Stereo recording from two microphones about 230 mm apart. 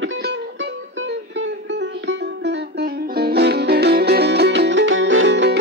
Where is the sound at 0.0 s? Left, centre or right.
Right.